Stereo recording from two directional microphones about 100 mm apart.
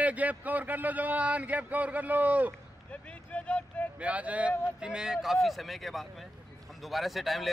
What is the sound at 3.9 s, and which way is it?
A man's voice, 15° right (ahead or behind).